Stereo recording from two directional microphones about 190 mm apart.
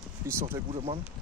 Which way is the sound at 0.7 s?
30° right (ahead or behind).